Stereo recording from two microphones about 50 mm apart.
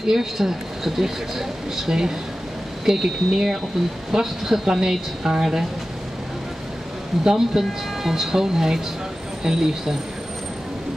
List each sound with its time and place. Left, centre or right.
0.0 s speech: centre
7.2 s speech: centre